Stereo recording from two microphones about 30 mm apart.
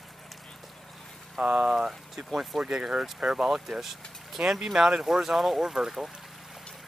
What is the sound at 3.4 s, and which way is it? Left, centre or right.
Speech, centre.